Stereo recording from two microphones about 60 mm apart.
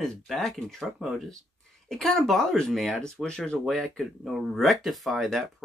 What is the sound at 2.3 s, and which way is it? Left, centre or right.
Speech, centre.